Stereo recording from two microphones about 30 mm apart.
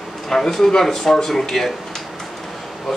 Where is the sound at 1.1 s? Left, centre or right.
Centre.